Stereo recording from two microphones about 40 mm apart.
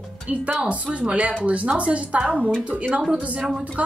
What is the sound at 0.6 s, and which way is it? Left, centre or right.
Speech, right.